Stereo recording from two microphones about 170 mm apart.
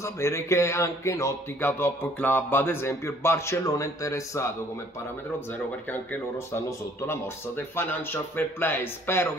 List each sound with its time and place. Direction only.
0.0 s a man's voice: 15° left (ahead or behind)
5.5 s a man's voice: 15° left (ahead or behind)